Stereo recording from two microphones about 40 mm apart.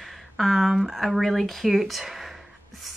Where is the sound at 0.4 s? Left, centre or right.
Centre.